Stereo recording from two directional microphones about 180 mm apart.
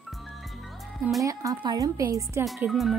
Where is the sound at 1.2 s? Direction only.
20° right (ahead or behind).